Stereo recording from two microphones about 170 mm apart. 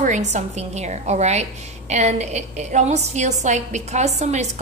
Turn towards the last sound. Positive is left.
turn(degrees=-40)  # may be behind; listen again after turning